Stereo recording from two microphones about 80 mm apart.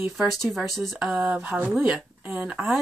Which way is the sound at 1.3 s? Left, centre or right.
Right.